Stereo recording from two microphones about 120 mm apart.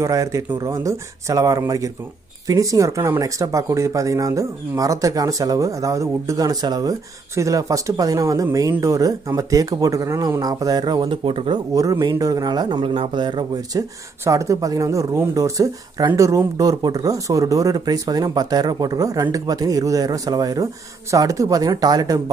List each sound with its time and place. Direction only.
0.0 s speech: 25° right (ahead or behind); by 11.6 s 45° right (ahead or behind)
11.7 s speech: 30° right (ahead or behind)
14.2 s speech: 25° right (ahead or behind)